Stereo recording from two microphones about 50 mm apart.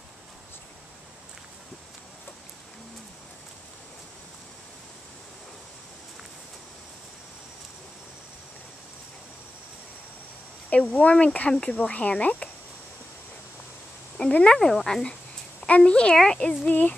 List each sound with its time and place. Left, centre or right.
10.7 s speech: left
14.4 s speech: centre
15.6 s a woman's voice: left